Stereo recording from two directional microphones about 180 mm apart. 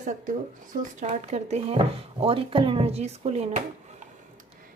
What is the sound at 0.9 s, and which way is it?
Speech, 40° right (ahead or behind).